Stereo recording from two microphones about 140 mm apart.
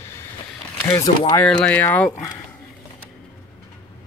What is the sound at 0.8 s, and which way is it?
Speech, 25° left (ahead or behind).